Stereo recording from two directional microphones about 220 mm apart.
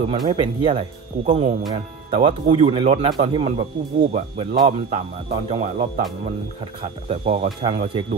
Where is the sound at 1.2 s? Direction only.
35° right (ahead or behind).